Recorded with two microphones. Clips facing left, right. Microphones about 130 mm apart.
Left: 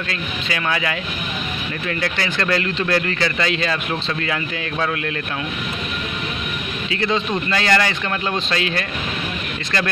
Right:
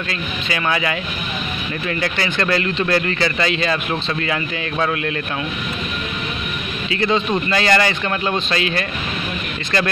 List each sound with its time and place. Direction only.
0.1 s a man's voice: 10° right (ahead or behind)
6.9 s a man's voice: 5° right (ahead or behind)